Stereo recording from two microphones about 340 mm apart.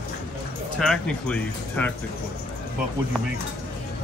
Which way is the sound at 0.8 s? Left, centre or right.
Centre.